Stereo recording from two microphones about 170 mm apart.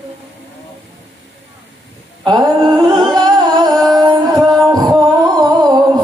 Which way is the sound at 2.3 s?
25° right (ahead or behind).